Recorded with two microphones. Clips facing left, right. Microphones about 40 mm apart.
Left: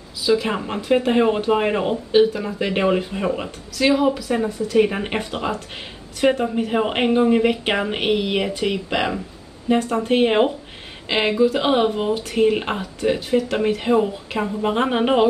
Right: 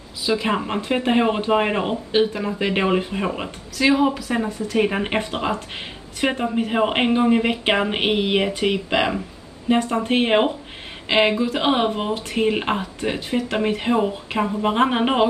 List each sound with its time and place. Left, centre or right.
0.3 s speech: centre
4.5 s speech: right
4.7 s speech: centre
5.2 s speech: right
12.1 s speech: right; by 15.2 s centre